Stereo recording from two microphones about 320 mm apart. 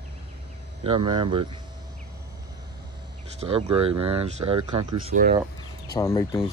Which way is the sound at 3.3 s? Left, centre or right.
Centre.